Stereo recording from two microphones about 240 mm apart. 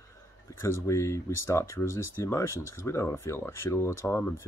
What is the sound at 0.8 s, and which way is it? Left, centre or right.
Speech, centre.